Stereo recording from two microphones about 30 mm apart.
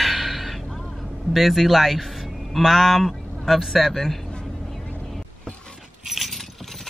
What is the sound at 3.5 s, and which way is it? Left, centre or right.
Speech, centre.